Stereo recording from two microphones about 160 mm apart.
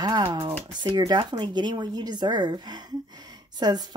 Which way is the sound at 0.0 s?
30° right (ahead or behind).